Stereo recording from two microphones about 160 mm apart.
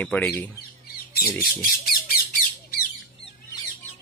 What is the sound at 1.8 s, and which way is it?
Squawk, 65° left (ahead or behind).